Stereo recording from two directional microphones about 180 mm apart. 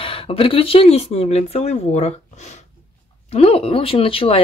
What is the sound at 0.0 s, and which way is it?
Speech, 30° left (ahead or behind).